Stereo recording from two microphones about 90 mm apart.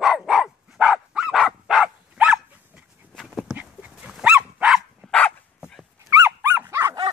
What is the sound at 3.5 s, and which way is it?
Dog, 15° right (ahead or behind).